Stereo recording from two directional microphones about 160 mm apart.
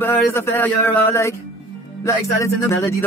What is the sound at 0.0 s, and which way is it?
Speech, 15° left (ahead or behind).